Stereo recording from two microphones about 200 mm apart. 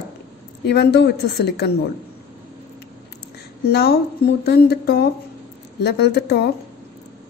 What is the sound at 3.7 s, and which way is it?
A woman's voice, 55° left (ahead or behind).